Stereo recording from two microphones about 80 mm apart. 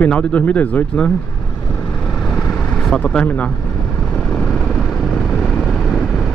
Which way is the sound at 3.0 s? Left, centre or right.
Centre.